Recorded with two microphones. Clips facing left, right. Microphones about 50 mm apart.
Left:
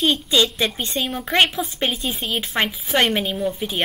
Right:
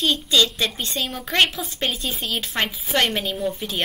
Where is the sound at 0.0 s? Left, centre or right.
Centre.